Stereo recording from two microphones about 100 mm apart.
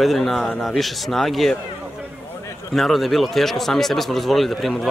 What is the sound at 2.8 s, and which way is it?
A man's voice, centre (ahead or behind).